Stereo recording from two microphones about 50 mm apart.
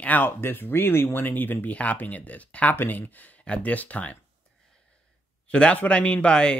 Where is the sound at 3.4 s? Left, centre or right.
Left.